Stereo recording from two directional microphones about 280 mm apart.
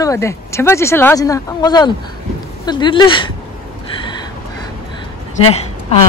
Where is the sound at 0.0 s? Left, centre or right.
Centre.